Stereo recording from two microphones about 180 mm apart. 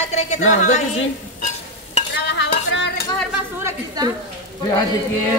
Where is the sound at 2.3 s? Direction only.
75° left (ahead or behind).